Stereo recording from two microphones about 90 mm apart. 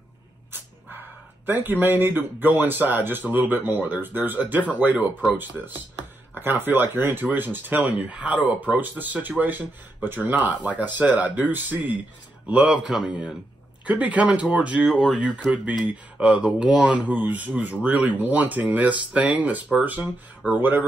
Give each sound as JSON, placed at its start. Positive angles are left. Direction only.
{"t": 1.4, "sound": "speech", "side_deg": -20}